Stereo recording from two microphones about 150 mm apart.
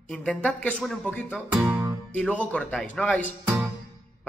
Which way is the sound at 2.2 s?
10° left (ahead or behind).